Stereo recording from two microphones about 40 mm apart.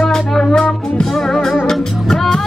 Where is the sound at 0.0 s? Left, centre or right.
Centre.